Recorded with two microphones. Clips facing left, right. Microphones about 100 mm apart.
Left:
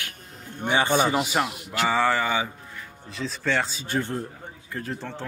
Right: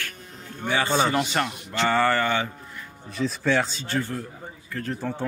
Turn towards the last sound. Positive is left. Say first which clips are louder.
# right 2 dB
turn(degrees=15)  # may be behind; listen again after turning